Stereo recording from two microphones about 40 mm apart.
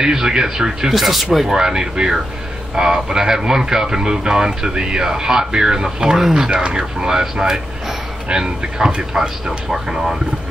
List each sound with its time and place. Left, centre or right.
0.0 s speech: centre
0.9 s speech: centre